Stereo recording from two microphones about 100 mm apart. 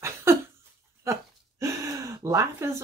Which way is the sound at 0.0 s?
25° right (ahead or behind).